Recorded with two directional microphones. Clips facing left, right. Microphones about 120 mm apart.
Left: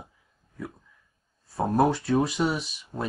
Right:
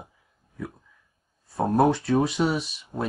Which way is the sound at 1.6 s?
Centre (ahead or behind).